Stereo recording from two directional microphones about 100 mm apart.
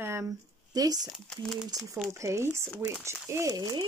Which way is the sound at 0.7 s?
40° right (ahead or behind).